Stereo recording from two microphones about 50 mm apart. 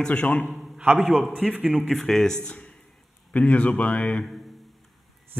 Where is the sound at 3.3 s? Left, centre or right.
Left.